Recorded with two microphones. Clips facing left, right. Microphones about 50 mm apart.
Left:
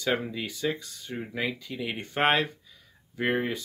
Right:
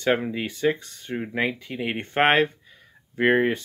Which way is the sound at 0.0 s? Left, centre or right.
Right.